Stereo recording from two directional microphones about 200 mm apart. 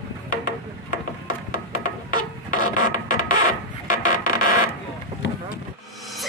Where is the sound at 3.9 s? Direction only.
40° left (ahead or behind).